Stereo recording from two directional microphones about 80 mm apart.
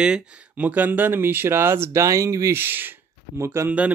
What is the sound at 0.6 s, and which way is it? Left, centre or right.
Speech, right.